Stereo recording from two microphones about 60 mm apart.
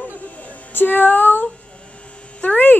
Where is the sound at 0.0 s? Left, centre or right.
Left.